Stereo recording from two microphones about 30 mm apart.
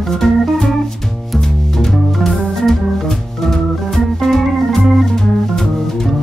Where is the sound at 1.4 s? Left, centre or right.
Centre.